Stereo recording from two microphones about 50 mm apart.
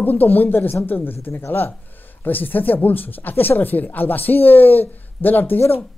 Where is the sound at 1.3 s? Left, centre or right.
Left.